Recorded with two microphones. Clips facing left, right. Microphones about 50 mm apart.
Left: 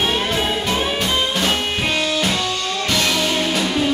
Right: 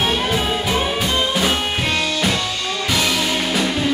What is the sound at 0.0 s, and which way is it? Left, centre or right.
Music, centre.